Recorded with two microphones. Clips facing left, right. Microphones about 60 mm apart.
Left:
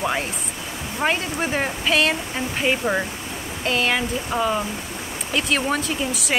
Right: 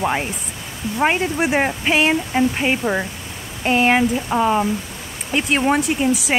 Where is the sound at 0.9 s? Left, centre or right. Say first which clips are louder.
Right 5 dB; centre.